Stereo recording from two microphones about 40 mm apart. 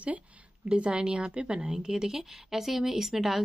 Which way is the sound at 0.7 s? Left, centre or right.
Right.